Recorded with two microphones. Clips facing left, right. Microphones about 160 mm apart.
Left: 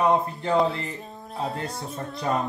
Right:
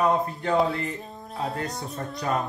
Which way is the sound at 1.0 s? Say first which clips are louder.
Left 1 dB; centre (ahead or behind).